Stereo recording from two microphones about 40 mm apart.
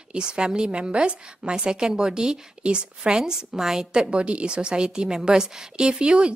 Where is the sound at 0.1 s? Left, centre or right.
Right.